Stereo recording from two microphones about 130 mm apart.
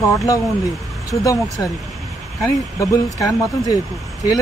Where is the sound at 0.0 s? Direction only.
25° left (ahead or behind).